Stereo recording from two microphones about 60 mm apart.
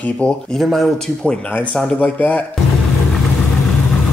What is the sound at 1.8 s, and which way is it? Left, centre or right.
Speech, centre.